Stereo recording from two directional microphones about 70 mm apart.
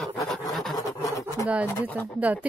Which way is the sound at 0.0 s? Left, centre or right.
Centre.